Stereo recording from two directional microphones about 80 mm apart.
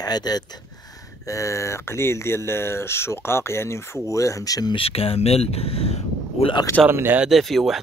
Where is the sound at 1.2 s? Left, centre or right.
Left.